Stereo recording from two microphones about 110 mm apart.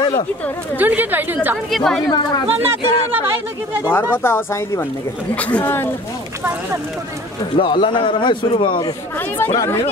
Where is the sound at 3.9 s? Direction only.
20° left (ahead or behind).